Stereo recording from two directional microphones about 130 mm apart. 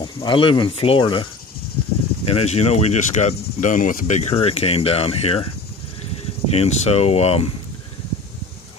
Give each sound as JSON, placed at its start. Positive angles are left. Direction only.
{"t": 0.2, "sound": "speech", "side_deg": 40}
{"t": 2.2, "sound": "speech", "side_deg": 50}
{"t": 6.5, "sound": "speech", "side_deg": 55}